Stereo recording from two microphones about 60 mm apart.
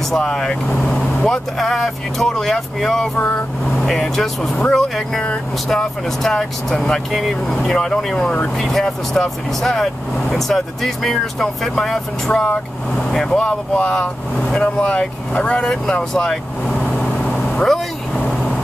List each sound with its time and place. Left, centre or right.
0.2 s speech: centre
13.4 s speech: left
16.6 s vehicle: centre